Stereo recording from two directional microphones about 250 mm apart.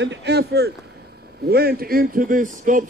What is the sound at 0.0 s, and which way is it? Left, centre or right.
A man's voice, right.